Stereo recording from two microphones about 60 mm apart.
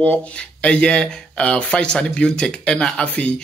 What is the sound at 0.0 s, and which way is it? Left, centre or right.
Speech, left.